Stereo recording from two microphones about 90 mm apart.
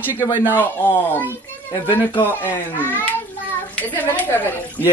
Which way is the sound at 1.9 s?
25° left (ahead or behind).